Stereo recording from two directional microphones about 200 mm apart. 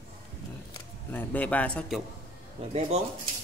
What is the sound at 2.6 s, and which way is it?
Speech, 30° right (ahead or behind).